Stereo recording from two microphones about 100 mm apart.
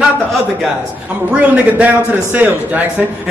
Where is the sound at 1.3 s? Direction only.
15° right (ahead or behind).